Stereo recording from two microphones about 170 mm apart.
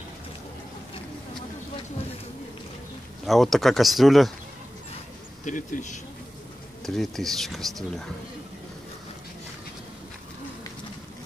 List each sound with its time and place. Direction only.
3.3 s speech: centre (ahead or behind)
5.4 s speech: 45° left (ahead or behind)
6.8 s speech: centre (ahead or behind)